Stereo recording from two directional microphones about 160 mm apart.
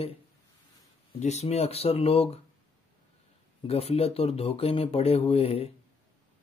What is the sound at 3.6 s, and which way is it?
Speech, 40° left (ahead or behind).